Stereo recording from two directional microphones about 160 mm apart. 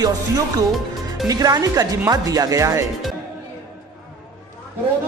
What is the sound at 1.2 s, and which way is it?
Speech, 25° right (ahead or behind).